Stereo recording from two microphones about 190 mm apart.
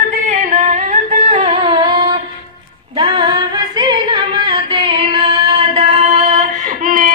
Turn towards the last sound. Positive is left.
turn(degrees=-45)  # may be behind; listen again after turning